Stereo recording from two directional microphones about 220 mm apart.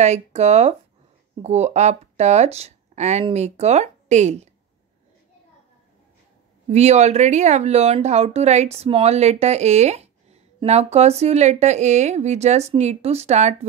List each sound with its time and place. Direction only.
0.0 s speech: 30° right (ahead or behind)
6.7 s speech: 30° right (ahead or behind)